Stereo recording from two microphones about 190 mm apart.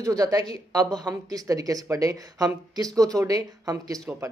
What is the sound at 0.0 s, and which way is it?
Speech, 20° right (ahead or behind).